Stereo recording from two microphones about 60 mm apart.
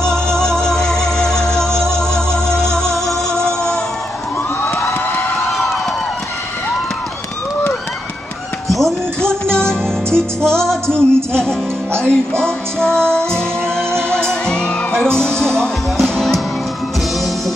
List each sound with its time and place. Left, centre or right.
0.0 s music: centre
8.6 s music: centre
9.2 s music: centre
10.9 s music: right
12.1 s music: centre